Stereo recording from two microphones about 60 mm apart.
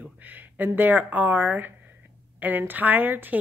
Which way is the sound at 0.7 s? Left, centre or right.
Right.